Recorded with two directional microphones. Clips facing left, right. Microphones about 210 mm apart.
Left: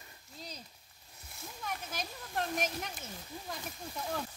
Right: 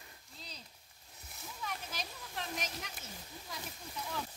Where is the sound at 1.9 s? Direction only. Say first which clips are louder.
Left 3 dB; 50° left (ahead or behind).